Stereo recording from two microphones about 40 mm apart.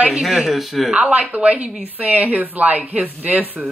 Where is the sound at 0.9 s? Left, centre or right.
Right.